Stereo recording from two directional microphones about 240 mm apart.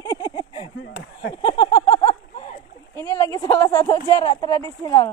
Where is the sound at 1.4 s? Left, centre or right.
Centre.